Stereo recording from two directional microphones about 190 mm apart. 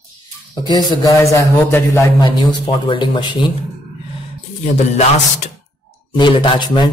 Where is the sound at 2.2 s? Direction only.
25° left (ahead or behind).